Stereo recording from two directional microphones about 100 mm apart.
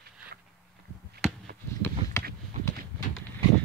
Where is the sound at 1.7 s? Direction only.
25° left (ahead or behind).